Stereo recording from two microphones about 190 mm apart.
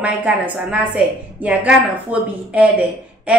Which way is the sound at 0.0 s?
5° right (ahead or behind).